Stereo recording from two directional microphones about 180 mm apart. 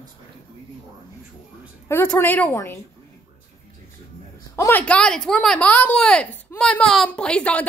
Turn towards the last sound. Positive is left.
turn(degrees=5)  # may be behind; listen again after turning